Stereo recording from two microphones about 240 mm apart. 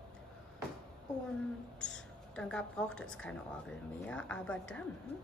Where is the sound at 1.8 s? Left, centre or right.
Centre.